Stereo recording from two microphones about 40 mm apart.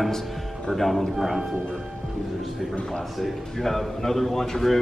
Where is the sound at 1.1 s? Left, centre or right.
Centre.